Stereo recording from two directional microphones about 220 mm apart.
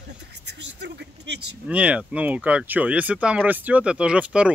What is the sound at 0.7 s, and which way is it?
Speech, 50° right (ahead or behind).